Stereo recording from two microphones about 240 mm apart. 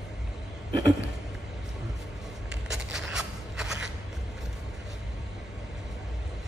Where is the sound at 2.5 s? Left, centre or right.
Centre.